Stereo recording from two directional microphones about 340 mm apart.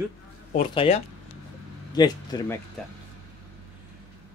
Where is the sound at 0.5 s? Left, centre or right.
Centre.